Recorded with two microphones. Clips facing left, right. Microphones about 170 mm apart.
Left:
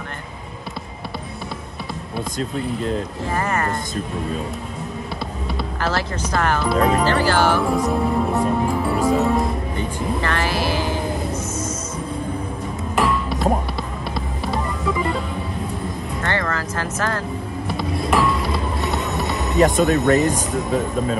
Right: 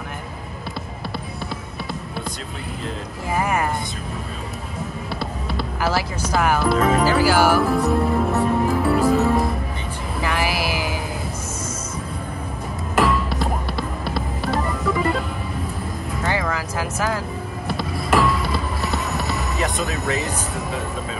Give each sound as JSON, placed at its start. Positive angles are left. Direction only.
{"t": 3.3, "sound": "speech", "side_deg": -10}
{"t": 5.5, "sound": "speech", "side_deg": -5}
{"t": 7.8, "sound": "music", "side_deg": 0}
{"t": 10.2, "sound": "vehicle", "side_deg": -10}
{"t": 12.9, "sound": "music", "side_deg": 0}
{"t": 16.2, "sound": "music", "side_deg": -5}
{"t": 19.6, "sound": "speech", "side_deg": 40}